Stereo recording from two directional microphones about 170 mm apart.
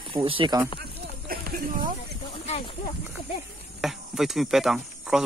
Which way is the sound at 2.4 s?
40° left (ahead or behind).